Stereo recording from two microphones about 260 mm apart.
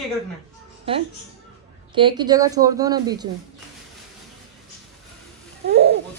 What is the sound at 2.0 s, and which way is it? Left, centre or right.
A woman's voice, centre.